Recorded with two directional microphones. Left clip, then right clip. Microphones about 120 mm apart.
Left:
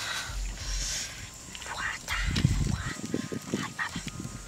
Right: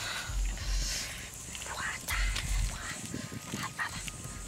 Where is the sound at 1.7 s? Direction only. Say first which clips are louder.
Left 3 dB; 20° left (ahead or behind).